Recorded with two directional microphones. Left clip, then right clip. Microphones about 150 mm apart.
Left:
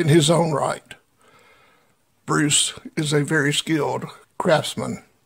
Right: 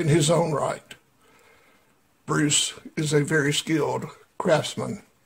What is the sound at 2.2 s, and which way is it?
Speech, 30° left (ahead or behind).